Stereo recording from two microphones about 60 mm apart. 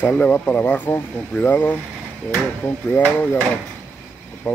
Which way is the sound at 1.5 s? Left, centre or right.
Left.